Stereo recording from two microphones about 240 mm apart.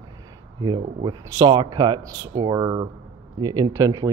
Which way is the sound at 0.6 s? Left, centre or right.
Centre.